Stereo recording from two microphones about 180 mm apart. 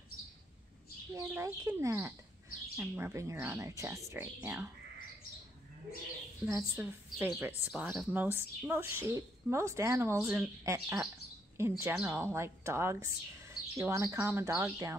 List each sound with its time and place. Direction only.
1.1 s a woman's voice: 15° right (ahead or behind)
6.4 s a woman's voice: 15° right (ahead or behind)